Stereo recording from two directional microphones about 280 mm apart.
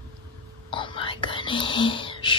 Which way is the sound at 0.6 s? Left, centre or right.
Centre.